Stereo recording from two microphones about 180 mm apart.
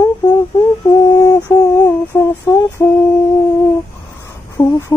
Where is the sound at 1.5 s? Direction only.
15° left (ahead or behind).